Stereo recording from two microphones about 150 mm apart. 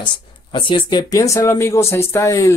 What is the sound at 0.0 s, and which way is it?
Speech, 30° left (ahead or behind).